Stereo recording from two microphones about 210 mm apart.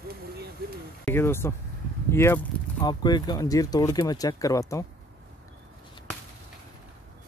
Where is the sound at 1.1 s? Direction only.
10° left (ahead or behind).